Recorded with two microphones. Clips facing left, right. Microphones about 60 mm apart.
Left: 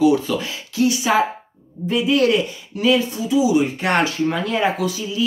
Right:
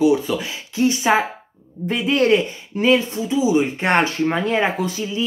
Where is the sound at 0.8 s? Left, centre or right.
Right.